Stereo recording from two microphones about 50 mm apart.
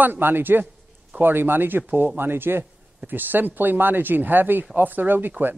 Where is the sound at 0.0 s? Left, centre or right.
Right.